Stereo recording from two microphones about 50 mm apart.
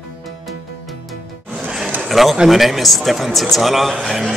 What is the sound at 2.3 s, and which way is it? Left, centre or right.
A man's voice, centre.